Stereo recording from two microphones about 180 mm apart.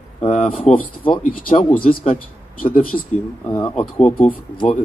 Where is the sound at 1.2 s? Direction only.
50° left (ahead or behind).